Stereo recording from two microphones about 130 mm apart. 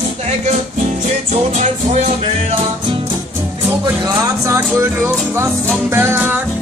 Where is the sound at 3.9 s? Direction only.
30° right (ahead or behind).